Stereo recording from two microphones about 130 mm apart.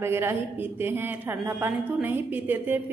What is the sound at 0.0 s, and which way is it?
A woman's voice, 20° right (ahead or behind).